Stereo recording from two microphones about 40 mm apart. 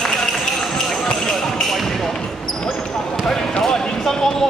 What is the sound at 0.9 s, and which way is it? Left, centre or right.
Basketball bounce, centre.